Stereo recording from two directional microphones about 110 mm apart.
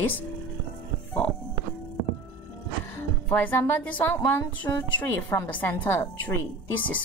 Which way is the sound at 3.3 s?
15° left (ahead or behind).